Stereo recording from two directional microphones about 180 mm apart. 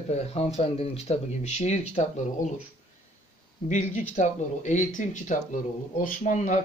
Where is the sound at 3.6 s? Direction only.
40° left (ahead or behind).